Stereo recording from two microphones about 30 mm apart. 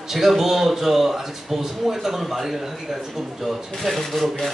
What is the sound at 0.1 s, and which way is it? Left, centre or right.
Speech, centre.